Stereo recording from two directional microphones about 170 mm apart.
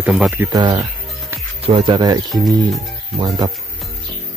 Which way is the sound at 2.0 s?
20° right (ahead or behind).